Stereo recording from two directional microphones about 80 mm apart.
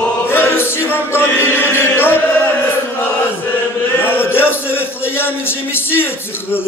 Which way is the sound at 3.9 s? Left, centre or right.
Left.